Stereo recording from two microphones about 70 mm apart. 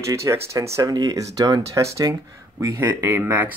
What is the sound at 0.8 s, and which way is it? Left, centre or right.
Speech, right.